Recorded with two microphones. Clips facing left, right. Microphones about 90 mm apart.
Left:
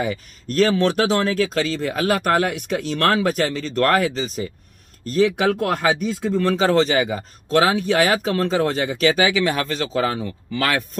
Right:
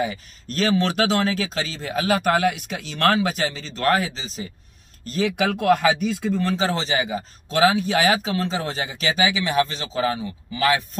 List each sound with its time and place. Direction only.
0.6 s speech: 45° left (ahead or behind)